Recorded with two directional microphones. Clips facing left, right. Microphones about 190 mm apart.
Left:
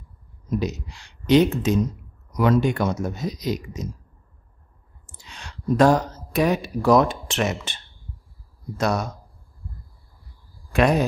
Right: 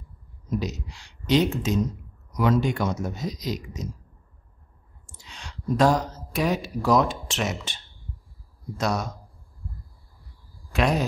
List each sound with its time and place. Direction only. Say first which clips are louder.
0.6 s speech: left 4 dB; 55° left (ahead or behind)
5.3 s speech: left 4 dB; 55° left (ahead or behind)
10.7 s speech: left 4 dB; 55° left (ahead or behind)